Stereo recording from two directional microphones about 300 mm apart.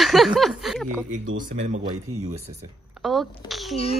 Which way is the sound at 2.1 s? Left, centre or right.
Right.